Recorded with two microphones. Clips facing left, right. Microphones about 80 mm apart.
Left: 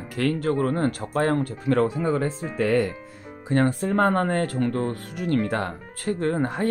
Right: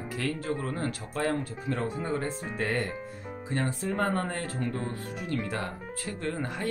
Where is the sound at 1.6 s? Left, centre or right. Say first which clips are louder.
Left 12 dB; left.